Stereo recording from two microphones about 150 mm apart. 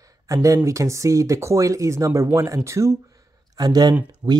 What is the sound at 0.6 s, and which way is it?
Speech, 20° right (ahead or behind).